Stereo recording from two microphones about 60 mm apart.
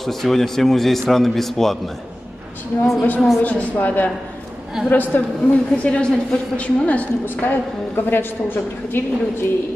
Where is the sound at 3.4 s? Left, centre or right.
Left.